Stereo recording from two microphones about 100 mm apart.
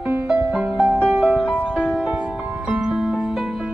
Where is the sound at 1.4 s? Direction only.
10° left (ahead or behind).